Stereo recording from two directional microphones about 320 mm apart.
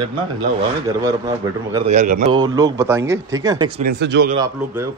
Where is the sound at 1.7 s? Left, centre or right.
Right.